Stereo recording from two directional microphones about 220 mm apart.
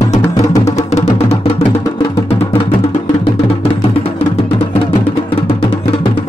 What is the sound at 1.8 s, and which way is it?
Music, 15° left (ahead or behind).